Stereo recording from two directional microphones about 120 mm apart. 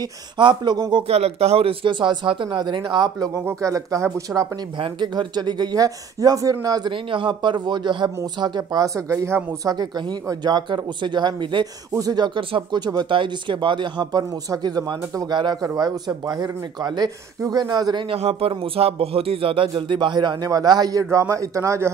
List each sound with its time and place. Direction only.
0.0 s speech: 40° right (ahead or behind)
1.0 s a man's voice: 60° right (ahead or behind); by 4.6 s 30° right (ahead or behind)
4.7 s speech: 40° right (ahead or behind)
6.9 s a man's voice: 45° right (ahead or behind); by 9.8 s 20° right (ahead or behind)
9.8 s a man's voice: 35° right (ahead or behind)